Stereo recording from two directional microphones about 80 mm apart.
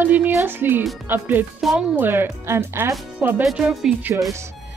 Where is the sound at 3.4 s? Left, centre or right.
Centre.